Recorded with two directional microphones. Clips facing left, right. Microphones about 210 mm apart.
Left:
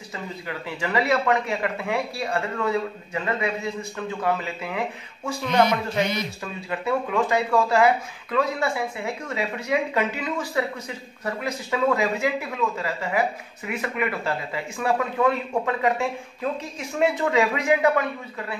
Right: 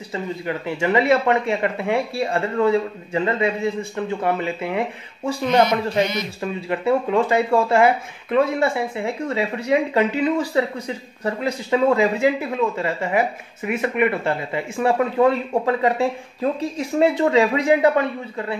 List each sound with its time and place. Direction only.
0.1 s speech: 25° right (ahead or behind)